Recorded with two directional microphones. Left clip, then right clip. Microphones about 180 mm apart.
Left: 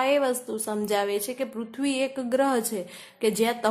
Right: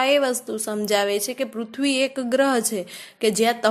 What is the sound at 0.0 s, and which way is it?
A woman's voice, 15° right (ahead or behind).